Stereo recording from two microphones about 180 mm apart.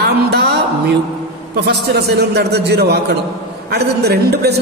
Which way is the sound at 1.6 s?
65° right (ahead or behind).